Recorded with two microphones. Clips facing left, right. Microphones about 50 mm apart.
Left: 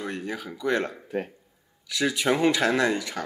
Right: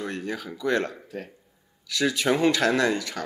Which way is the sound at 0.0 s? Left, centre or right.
Centre.